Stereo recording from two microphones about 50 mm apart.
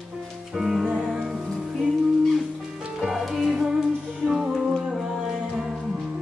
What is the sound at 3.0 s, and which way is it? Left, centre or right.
Music, centre.